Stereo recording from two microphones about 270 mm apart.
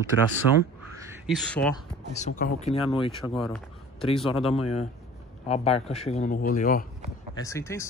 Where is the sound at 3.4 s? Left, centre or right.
Centre.